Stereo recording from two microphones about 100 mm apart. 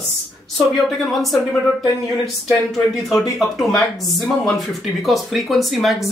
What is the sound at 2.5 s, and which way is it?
Speech, 5° left (ahead or behind).